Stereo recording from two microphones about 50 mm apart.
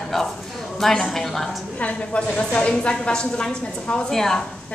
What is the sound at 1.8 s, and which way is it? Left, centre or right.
A woman's voice, left.